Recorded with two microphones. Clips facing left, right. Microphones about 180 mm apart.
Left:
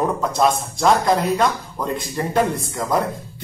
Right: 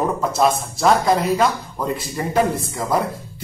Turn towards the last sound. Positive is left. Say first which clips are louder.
# even
turn(degrees=-5)  # may be behind; listen again after turning